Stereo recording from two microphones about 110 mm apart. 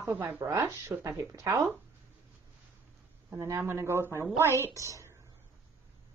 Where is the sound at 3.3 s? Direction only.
25° right (ahead or behind).